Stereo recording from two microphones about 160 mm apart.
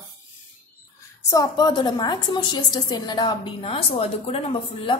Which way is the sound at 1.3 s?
25° left (ahead or behind).